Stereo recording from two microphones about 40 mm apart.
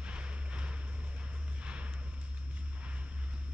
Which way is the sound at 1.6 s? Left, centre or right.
Right.